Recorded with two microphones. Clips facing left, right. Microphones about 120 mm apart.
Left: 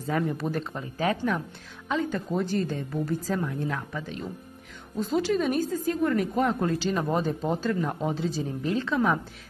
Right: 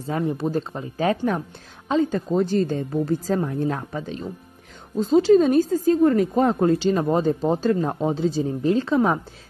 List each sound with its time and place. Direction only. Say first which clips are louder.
0.0 s a woman's voice: right 3 dB; 30° right (ahead or behind)